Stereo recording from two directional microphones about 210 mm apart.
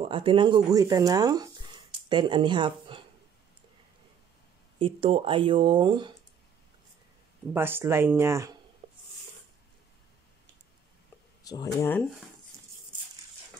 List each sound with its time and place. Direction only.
0.0 s speech: 25° right (ahead or behind)
4.7 s speech: 25° right (ahead or behind)
7.5 s speech: 10° right (ahead or behind)
8.8 s a sound: 25° right (ahead or behind)
11.4 s speech: 15° left (ahead or behind)